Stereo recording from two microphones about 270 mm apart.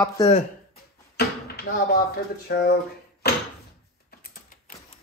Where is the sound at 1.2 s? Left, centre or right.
Left.